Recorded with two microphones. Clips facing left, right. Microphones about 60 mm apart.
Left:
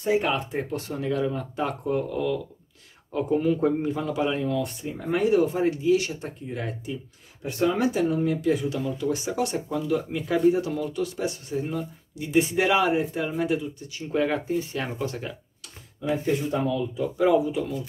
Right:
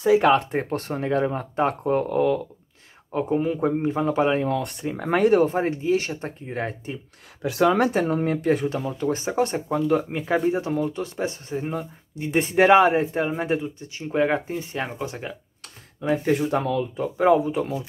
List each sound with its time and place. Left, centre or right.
0.2 s speech: right
3.1 s speech: right
5.5 s speech: right
7.4 s speech: right
15.0 s speech: centre
16.0 s speech: right
17.0 s speech: right